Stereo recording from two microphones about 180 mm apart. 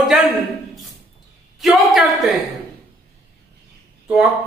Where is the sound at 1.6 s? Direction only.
Centre (ahead or behind).